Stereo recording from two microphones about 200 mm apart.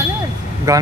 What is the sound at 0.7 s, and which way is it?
Speech, 15° right (ahead or behind).